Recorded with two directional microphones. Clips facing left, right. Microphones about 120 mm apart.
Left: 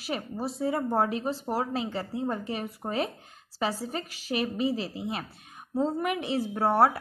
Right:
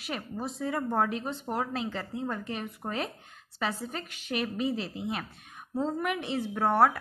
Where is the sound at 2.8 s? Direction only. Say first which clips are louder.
Left 3 dB; 15° left (ahead or behind).